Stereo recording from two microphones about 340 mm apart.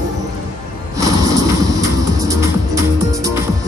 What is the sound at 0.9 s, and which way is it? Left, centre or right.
Music, centre.